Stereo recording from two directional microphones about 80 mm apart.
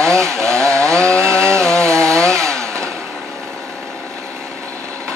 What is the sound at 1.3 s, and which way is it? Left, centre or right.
Chainsaw, right.